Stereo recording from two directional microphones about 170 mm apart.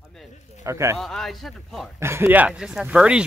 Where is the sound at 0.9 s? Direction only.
Centre (ahead or behind).